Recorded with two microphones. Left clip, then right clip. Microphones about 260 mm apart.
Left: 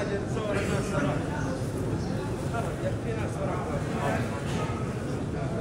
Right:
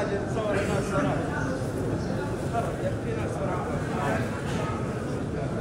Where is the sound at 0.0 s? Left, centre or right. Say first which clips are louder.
Right 3 dB; centre.